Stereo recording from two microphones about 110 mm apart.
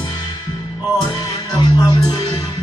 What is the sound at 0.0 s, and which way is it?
Music, 35° left (ahead or behind).